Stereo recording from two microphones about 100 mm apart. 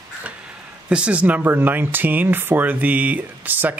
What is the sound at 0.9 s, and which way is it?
Speech, 10° right (ahead or behind).